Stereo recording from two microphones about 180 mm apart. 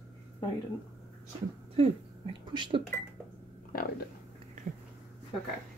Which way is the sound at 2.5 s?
25° right (ahead or behind).